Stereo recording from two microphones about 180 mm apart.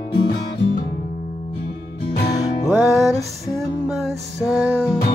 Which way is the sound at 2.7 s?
5° right (ahead or behind).